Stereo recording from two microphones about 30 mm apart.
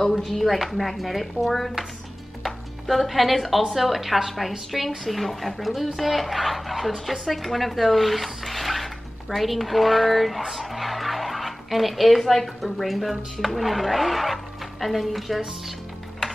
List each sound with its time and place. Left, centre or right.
0.3 s a woman's voice: centre